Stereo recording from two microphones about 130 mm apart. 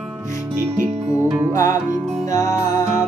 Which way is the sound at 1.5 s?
25° left (ahead or behind).